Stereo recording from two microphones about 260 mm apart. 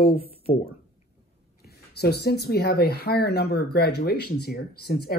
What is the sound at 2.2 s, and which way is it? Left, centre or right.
Speech, left.